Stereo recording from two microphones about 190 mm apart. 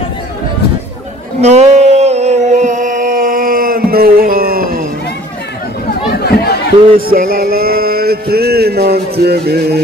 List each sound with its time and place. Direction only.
1.4 s a sound: 35° right (ahead or behind)
6.1 s chatter: 55° left (ahead or behind)
7.1 s music: 50° right (ahead or behind)